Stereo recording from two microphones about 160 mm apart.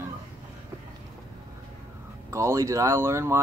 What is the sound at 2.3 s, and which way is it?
Speech, 20° right (ahead or behind).